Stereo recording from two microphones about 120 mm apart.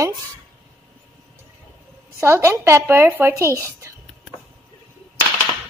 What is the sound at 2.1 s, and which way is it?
Speech, 20° right (ahead or behind).